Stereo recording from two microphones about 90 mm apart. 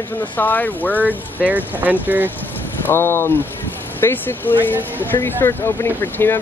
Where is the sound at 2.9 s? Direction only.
25° left (ahead or behind).